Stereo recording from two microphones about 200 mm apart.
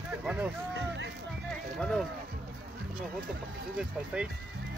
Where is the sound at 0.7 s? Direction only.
60° right (ahead or behind).